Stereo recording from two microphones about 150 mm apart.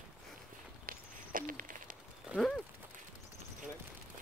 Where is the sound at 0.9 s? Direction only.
65° right (ahead or behind).